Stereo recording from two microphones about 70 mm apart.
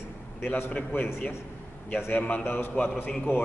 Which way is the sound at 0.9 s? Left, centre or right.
Centre.